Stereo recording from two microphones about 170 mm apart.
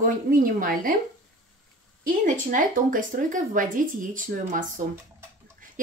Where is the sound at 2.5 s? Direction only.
55° right (ahead or behind).